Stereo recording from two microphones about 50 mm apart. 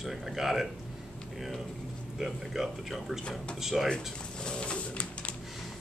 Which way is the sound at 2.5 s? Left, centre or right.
Centre.